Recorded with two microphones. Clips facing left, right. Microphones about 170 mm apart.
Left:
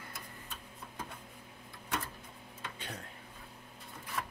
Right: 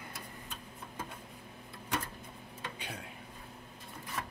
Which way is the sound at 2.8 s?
10° right (ahead or behind).